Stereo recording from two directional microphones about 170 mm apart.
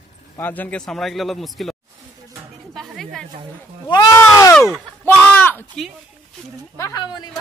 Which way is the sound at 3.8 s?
20° left (ahead or behind).